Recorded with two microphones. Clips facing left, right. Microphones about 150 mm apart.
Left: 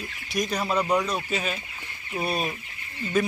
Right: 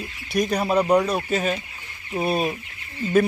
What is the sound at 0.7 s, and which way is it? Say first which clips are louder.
Speech: right 6 dB; 35° right (ahead or behind).